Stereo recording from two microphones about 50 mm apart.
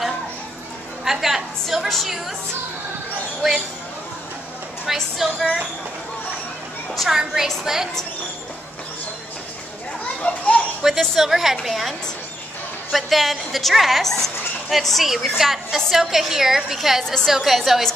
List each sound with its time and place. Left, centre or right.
1.0 s a sound: centre
2.0 s a woman's voice: centre
4.9 s a woman's voice: centre
7.0 s a woman's voice: centre
10.2 s children playing: left
11.0 s a woman's voice: centre
12.9 s a woman's voice: centre
17.0 s a woman's voice: centre
17.3 s a woman's voice: centre